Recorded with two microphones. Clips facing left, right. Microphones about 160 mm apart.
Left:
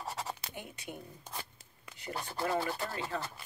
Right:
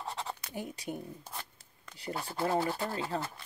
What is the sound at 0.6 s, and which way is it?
Speech, 35° right (ahead or behind).